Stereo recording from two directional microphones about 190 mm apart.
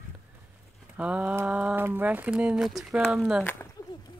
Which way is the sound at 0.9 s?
5° right (ahead or behind).